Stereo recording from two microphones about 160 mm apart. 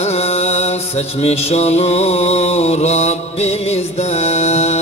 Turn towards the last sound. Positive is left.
turn(degrees=45)  # may be behind; listen again after turning